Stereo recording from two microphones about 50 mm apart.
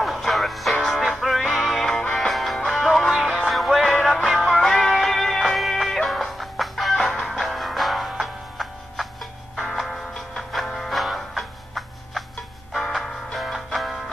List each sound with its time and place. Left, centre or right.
0.0 s music: centre
1.9 s music: centre
4.2 s music: centre
4.6 s music: centre
10.5 s music: centre